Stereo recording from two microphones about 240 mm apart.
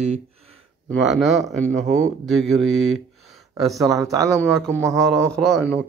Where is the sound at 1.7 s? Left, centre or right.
Right.